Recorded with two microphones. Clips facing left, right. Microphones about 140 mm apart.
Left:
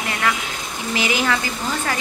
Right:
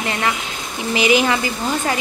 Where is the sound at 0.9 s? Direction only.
20° right (ahead or behind).